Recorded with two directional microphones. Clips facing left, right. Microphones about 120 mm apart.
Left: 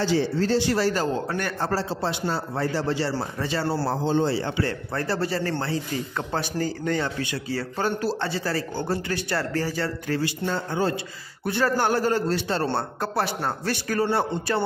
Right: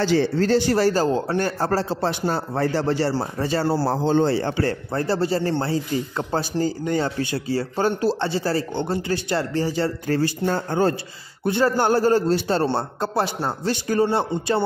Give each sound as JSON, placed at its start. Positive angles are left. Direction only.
{"t": 0.0, "sound": "speech", "side_deg": -65}
{"t": 0.7, "sound": "a man's voice", "side_deg": -45}
{"t": 1.1, "sound": "a man's voice", "side_deg": -30}
{"t": 1.7, "sound": "a man's voice", "side_deg": -50}
{"t": 4.0, "sound": "a man's voice", "side_deg": -60}
{"t": 4.9, "sound": "a man's voice", "side_deg": -25}
{"t": 10.0, "sound": "a man's voice", "side_deg": -40}
{"t": 11.4, "sound": "a man's voice", "side_deg": -25}